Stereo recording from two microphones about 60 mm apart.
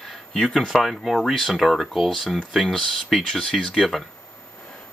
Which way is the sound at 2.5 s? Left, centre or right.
Centre.